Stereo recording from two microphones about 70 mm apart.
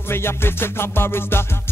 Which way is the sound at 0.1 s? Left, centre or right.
Left.